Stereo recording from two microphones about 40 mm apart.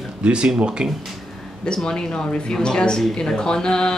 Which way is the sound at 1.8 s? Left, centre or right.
Centre.